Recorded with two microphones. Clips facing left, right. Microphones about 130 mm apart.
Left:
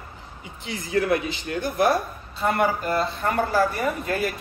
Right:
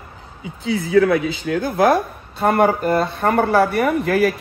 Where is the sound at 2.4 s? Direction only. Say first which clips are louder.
Right 7 dB; 55° right (ahead or behind); by 4.3 s 90° right.